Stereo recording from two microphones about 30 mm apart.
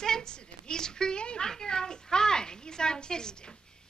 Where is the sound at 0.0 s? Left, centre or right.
Left.